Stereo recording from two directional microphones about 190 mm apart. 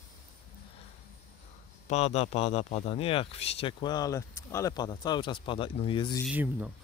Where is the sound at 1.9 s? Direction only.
35° left (ahead or behind).